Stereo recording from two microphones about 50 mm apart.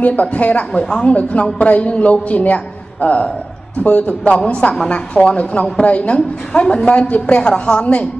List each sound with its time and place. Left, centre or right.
0.0 s a man's voice: left
0.8 s a woman's voice: centre
1.1 s a man's voice: left